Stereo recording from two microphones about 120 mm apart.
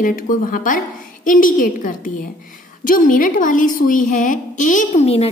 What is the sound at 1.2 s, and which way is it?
A woman's voice, 90° left.